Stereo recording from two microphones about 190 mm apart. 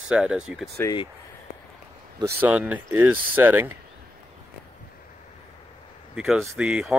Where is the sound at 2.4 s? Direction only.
10° right (ahead or behind).